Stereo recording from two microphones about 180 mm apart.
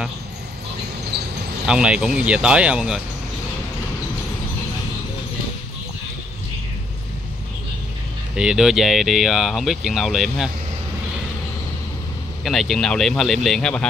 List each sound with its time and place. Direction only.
1.1 s a sound: 65° right (ahead or behind)
1.7 s speech: 5° right (ahead or behind)
8.4 s speech: 5° right (ahead or behind)
12.4 s speech: centre (ahead or behind)